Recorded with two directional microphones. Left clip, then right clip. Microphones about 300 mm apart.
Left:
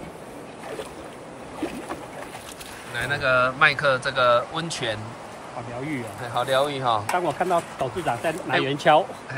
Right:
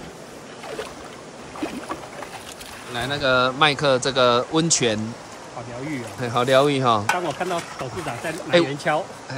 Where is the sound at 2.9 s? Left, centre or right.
Centre.